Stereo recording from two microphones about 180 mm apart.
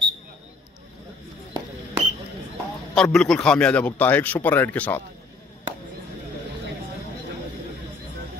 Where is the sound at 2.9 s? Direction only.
5° left (ahead or behind).